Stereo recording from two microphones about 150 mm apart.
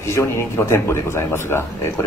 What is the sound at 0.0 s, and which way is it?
A man's voice, 20° left (ahead or behind).